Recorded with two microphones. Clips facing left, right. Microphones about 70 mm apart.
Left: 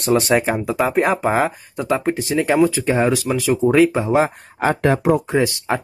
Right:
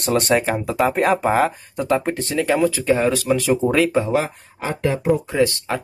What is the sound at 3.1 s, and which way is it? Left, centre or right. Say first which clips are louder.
Speech: even; centre.